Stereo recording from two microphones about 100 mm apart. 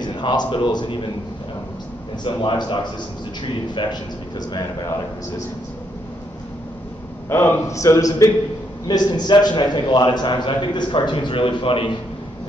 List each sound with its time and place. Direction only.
0.0 s a man's voice: 50° left (ahead or behind)
2.2 s a man's voice: 50° left (ahead or behind)
7.2 s a man's voice: 25° left (ahead or behind)
8.8 s a man's voice: 45° left (ahead or behind); by 11.9 s 60° left (ahead or behind)